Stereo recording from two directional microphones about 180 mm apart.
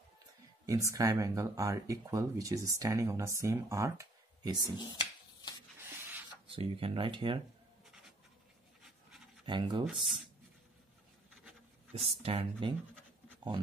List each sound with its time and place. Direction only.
0.7 s speech: 15° right (ahead or behind)
4.7 s a sound: 25° left (ahead or behind)
6.5 s speech: 30° right (ahead or behind)
9.5 s speech: 25° right (ahead or behind)
9.8 s speech: centre (ahead or behind)
12.0 s speech: 35° right (ahead or behind)